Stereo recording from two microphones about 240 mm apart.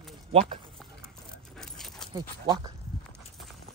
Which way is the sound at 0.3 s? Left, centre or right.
Right.